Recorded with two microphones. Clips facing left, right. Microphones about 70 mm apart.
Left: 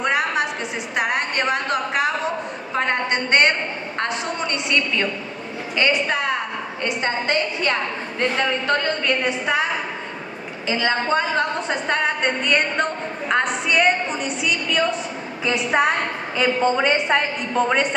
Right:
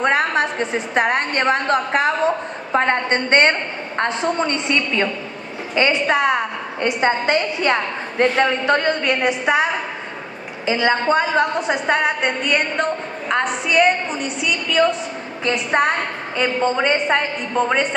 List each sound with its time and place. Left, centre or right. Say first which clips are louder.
0.0 s a woman's voice: right 3 dB; right
5.8 s a woman's voice: right 4 dB; right; by 17.8 s centre